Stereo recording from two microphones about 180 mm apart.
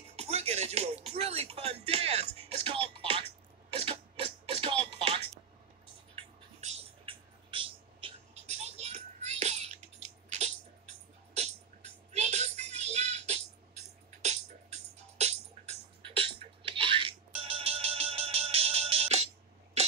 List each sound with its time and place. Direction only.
0.1 s music: 35° right (ahead or behind)
1.0 s speech: 35° right (ahead or behind)
3.7 s music: 35° right (ahead or behind)
6.6 s a sound: 35° right (ahead or behind)
11.3 s music: 35° right (ahead or behind)